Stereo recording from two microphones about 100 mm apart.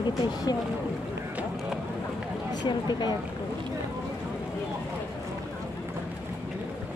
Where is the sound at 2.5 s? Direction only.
45° left (ahead or behind).